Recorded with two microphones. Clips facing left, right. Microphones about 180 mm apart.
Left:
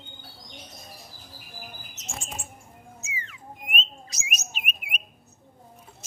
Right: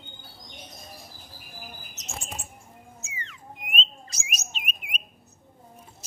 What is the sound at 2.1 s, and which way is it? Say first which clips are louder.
Chirp: even; centre (ahead or behind).